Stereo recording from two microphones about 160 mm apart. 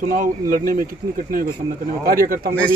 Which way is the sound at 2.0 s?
65° right (ahead or behind).